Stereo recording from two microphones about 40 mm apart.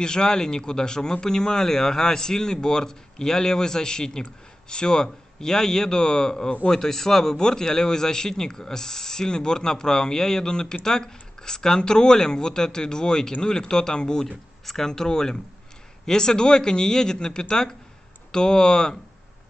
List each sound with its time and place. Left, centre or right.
0.0 s speech: centre